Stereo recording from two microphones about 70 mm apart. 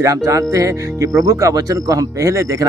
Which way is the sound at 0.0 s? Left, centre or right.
Right.